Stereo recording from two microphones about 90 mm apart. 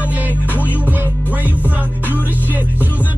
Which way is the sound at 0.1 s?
20° right (ahead or behind).